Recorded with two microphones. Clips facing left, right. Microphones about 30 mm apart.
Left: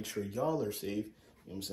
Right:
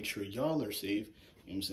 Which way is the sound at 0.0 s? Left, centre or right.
Right.